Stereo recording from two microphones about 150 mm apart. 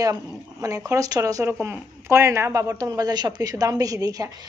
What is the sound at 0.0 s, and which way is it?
A woman's voice, 20° right (ahead or behind).